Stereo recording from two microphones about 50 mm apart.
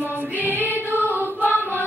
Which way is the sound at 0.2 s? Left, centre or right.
Right.